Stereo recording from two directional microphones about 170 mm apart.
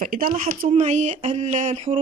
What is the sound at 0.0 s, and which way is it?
Speech, 55° right (ahead or behind).